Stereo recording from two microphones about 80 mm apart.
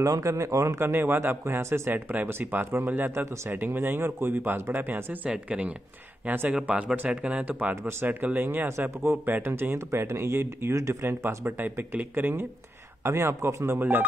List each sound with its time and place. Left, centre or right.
0.0 s speech: right
6.5 s speech: centre
7.7 s speech: right
8.1 s speech: right
11.1 s speech: right
13.0 s speech: right